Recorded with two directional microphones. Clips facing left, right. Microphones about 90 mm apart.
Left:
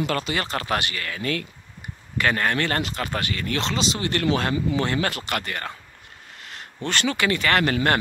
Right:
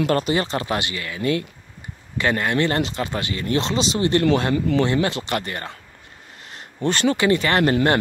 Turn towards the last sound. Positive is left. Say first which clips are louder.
# right 3 dB
turn(degrees=-30)  # may be behind; listen again after turning